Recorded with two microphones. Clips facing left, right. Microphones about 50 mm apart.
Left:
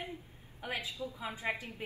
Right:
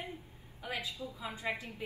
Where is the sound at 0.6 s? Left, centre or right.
Left.